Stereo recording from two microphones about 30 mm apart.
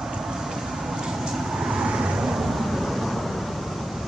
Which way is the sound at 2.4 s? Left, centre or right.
Centre.